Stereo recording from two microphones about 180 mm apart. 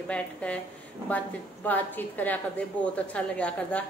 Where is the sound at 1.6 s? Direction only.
10° left (ahead or behind).